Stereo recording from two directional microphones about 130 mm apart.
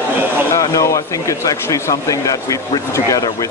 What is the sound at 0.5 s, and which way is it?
Speech, 25° left (ahead or behind).